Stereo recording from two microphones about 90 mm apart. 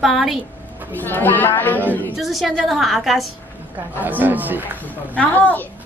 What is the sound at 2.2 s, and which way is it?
A woman's voice, centre (ahead or behind).